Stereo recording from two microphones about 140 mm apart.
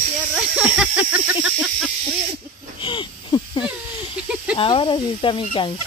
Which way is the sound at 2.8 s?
35° left (ahead or behind).